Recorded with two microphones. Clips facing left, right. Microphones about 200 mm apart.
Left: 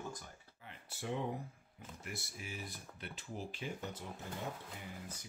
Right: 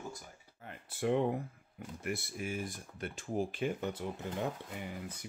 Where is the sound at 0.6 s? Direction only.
55° right (ahead or behind).